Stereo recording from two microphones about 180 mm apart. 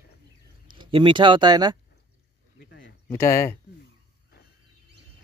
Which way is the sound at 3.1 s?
15° left (ahead or behind).